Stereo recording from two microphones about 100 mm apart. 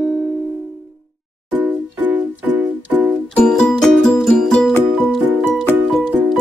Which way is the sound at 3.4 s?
5° left (ahead or behind).